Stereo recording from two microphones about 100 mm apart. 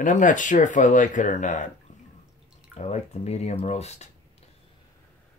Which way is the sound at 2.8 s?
90° left.